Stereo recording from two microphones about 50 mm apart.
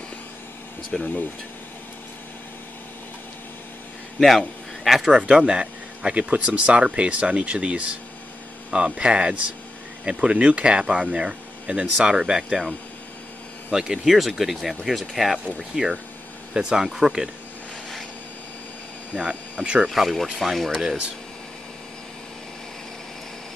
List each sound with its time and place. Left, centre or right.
0.9 s speech: centre
4.2 s speech: centre
5.4 s speech: centre
12.2 s speech: centre
13.7 s speech: centre
15.8 s speech: centre
19.1 s speech: centre
19.9 s speech: centre